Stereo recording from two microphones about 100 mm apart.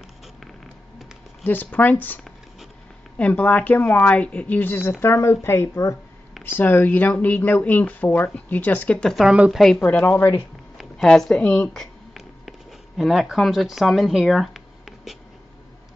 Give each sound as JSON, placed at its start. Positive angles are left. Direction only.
{"t": 1.4, "sound": "speech", "side_deg": 15}
{"t": 3.2, "sound": "speech", "side_deg": 15}
{"t": 9.1, "sound": "a woman's voice", "side_deg": -5}
{"t": 9.8, "sound": "speech", "side_deg": 15}
{"t": 10.8, "sound": "a woman's voice", "side_deg": 0}
{"t": 11.7, "sound": "a sound", "side_deg": 0}